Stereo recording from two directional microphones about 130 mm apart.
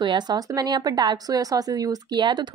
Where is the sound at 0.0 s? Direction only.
35° right (ahead or behind).